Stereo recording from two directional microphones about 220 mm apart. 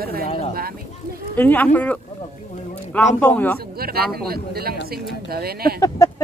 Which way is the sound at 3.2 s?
5° left (ahead or behind).